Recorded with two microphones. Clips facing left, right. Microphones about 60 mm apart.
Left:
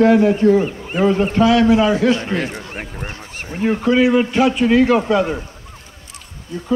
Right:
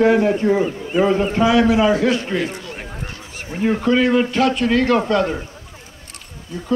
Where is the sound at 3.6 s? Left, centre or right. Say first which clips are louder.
Left 1 dB; centre.